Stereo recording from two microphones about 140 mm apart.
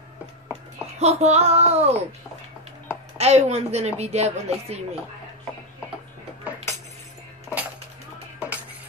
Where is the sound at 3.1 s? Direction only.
50° right (ahead or behind).